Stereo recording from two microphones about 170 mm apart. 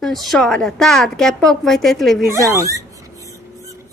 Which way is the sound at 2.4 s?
20° right (ahead or behind).